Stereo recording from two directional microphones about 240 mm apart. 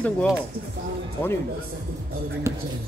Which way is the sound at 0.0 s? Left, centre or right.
Centre.